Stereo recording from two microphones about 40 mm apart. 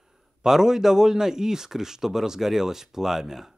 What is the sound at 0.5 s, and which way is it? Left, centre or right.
A man's voice, centre.